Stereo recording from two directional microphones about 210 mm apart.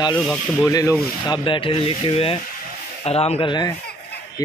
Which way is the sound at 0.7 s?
15° left (ahead or behind).